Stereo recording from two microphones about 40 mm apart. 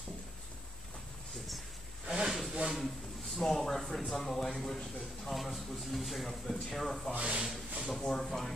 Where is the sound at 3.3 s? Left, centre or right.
Centre.